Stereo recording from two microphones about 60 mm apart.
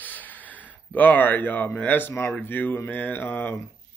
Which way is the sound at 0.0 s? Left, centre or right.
Left.